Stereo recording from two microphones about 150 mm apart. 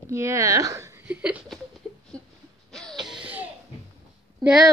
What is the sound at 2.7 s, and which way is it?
Music, centre (ahead or behind).